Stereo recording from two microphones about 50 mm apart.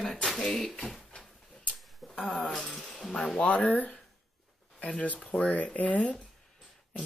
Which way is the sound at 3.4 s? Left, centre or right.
Left.